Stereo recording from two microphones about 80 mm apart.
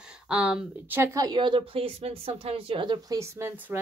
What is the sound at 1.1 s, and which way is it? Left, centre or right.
Speech, right.